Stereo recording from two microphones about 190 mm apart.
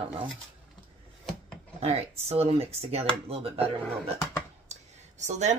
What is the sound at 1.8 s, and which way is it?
Speech, 35° right (ahead or behind).